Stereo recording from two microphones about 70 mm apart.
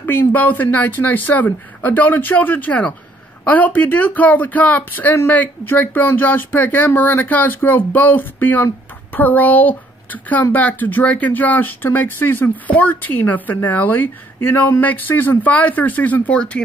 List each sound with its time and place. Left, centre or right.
0.0 s a woman's voice: left